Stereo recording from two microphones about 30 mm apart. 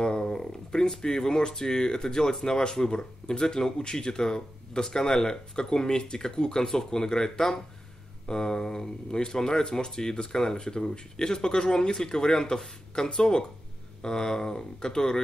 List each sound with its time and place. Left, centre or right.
0.0 s speech: left